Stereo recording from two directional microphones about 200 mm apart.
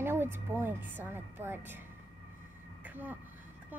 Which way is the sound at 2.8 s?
10° right (ahead or behind).